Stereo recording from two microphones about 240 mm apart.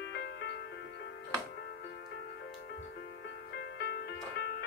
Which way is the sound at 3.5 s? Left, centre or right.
Left.